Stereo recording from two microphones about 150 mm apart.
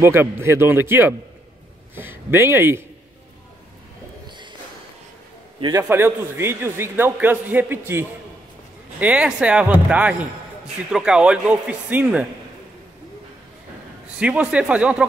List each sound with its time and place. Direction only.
0.0 s a man's voice: 15° right (ahead or behind)
5.6 s a man's voice: 25° right (ahead or behind); by 12.3 s 10° right (ahead or behind)
14.1 s a man's voice: 10° right (ahead or behind)